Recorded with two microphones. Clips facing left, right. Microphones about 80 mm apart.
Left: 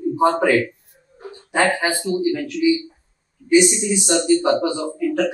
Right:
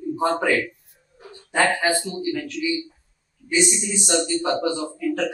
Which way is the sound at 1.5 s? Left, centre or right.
Left.